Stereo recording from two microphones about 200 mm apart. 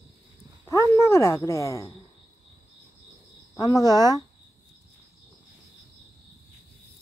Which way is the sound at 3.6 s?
20° left (ahead or behind).